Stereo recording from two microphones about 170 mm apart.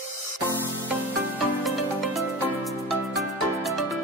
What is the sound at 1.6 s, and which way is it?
Music, centre (ahead or behind).